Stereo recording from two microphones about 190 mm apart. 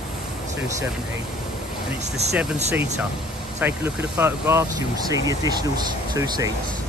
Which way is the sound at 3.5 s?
10° right (ahead or behind).